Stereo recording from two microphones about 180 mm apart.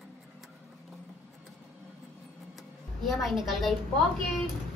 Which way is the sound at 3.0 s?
Centre (ahead or behind).